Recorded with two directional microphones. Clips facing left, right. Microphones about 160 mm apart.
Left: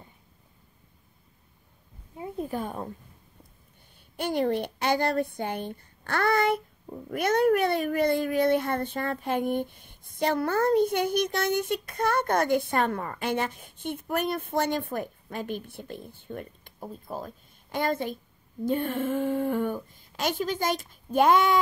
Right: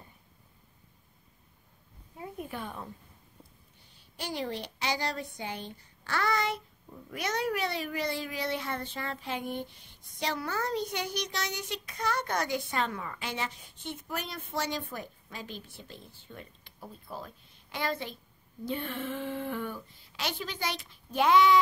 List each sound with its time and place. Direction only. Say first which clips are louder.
2.1 s a sound: left 6 dB; 25° left (ahead or behind)
2.4 s speech: left 8 dB; 40° left (ahead or behind)
4.2 s speech: left 9 dB; 55° left (ahead or behind)